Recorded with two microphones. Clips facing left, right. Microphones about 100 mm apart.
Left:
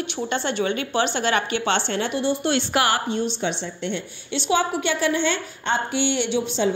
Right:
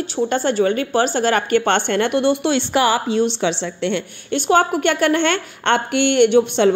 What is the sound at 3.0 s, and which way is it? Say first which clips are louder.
A woman's voice: right 6 dB; 90° right.